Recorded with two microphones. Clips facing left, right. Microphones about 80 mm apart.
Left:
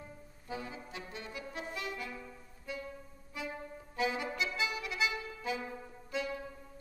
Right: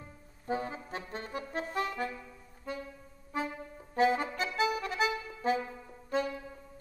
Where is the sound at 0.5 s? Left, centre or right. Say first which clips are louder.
Right 8 dB; right.